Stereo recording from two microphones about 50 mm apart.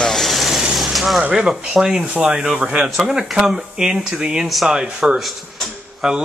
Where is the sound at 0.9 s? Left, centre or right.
Centre.